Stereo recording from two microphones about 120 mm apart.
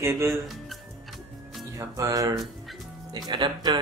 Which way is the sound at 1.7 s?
30° right (ahead or behind).